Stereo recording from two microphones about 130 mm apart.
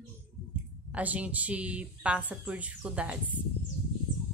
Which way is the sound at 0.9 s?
10° right (ahead or behind).